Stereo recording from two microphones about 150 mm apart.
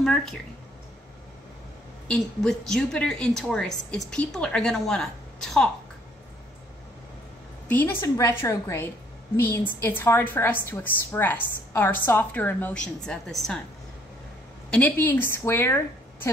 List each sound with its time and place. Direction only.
0.0 s a woman's voice: 5° left (ahead or behind)
2.0 s a woman's voice: 5° left (ahead or behind)
7.6 s a woman's voice: 10° left (ahead or behind)
14.7 s speech: 10° left (ahead or behind)